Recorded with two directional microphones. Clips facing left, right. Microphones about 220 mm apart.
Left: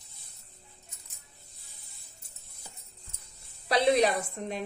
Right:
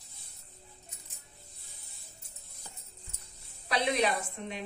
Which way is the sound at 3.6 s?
35° left (ahead or behind).